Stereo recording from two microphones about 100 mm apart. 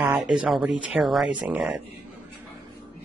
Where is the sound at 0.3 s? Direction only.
5° right (ahead or behind).